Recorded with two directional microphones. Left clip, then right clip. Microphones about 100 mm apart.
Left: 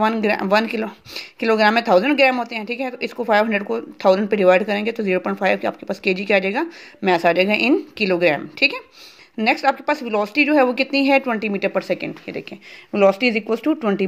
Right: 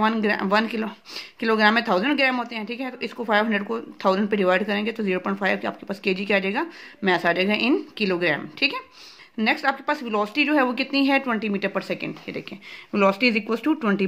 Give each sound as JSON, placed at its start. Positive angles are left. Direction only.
{"t": 0.2, "sound": "speech", "side_deg": 45}